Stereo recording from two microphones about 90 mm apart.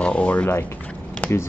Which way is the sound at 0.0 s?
15° left (ahead or behind).